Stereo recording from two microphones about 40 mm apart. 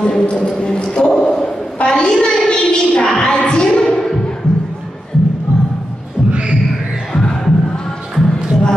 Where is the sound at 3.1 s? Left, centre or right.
Left.